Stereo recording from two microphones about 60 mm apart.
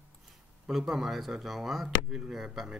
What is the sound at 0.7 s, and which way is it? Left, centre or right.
Speech, centre.